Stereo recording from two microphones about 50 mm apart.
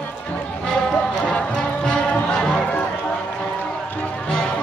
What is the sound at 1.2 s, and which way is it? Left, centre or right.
Music, centre.